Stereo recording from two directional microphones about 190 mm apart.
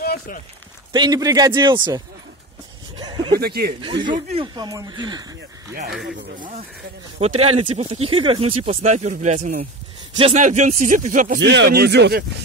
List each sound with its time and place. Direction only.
0.0 s a sound: 55° left (ahead or behind)
0.9 s speech: 20° right (ahead or behind)
3.0 s a sound: 20° right (ahead or behind)
3.3 s speech: 55° right (ahead or behind)
4.3 s speech: 25° right (ahead or behind)
7.2 s speech: 35° right (ahead or behind)
11.3 s speech: 65° right (ahead or behind)